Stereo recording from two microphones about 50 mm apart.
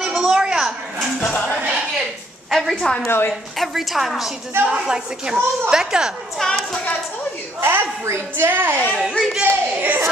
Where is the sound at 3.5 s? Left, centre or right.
Centre.